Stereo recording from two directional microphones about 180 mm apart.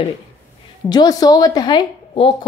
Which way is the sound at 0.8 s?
20° left (ahead or behind).